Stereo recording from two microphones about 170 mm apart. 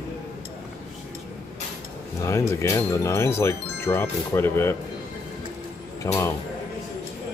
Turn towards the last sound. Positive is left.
turn(degrees=20)  # may be behind; listen again after turning